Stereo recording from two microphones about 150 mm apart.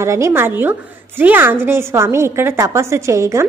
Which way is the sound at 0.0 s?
20° right (ahead or behind).